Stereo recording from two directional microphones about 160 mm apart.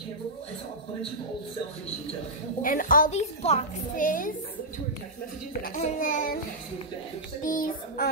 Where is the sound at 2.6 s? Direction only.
60° left (ahead or behind).